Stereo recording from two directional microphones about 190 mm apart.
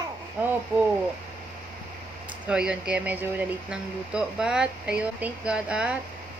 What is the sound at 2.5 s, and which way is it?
Speech, 5° right (ahead or behind).